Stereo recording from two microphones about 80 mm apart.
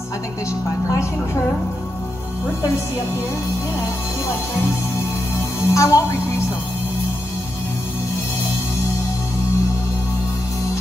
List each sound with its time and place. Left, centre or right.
0.8 s speech: left
5.6 s speech: left